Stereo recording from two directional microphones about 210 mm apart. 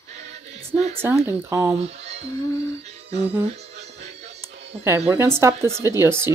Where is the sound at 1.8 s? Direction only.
30° right (ahead or behind).